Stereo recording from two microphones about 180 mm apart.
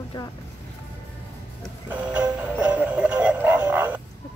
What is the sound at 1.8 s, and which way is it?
Music, 5° right (ahead or behind).